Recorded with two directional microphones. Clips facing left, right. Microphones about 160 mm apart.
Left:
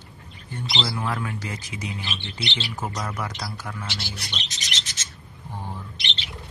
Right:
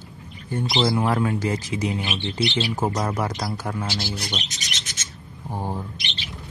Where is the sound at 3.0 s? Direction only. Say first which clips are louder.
Right 6 dB; 35° right (ahead or behind).